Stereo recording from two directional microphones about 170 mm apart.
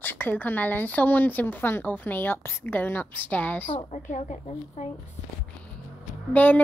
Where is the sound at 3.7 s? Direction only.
40° left (ahead or behind).